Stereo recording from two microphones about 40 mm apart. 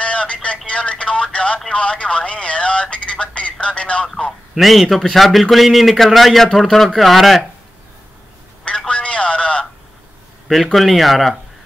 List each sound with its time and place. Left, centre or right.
0.0 s telephone: left
1.7 s speech: left
4.6 s a man's voice: centre
8.6 s telephone: left
10.5 s a man's voice: centre